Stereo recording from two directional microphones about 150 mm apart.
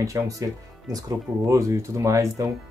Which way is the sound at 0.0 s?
20° right (ahead or behind).